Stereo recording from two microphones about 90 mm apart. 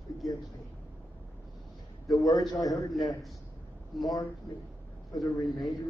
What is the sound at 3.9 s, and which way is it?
Speech, centre (ahead or behind).